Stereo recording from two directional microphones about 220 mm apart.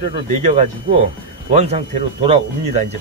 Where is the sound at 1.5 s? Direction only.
30° right (ahead or behind).